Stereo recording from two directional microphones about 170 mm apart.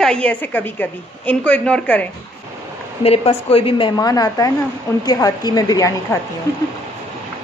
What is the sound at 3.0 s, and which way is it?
A woman's voice, 35° left (ahead or behind).